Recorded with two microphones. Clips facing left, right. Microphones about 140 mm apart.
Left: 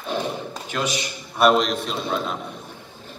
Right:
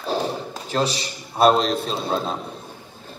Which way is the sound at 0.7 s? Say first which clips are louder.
Right 3 dB; 35° right (ahead or behind).